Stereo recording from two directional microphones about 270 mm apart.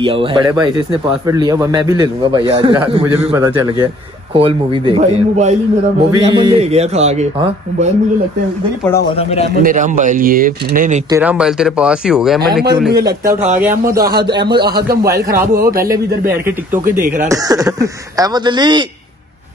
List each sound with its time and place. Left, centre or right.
0.0 s a man's voice: centre
9.6 s speech: right
11.1 s speech: centre
13.2 s speech: right
14.0 s a man's voice: centre
14.6 s speech: right
15.6 s a man's voice: centre